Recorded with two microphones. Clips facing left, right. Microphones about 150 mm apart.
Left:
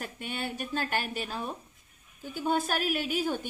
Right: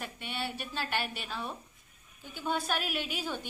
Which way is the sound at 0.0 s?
45° left (ahead or behind).